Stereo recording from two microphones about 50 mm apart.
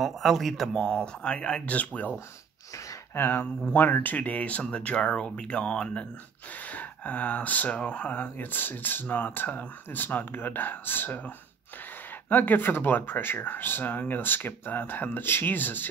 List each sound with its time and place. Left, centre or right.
0.0 s a man's voice: centre
0.8 s speech: centre
3.2 s speech: left